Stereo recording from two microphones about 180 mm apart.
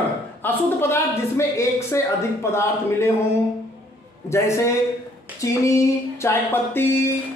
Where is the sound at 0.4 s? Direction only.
10° left (ahead or behind).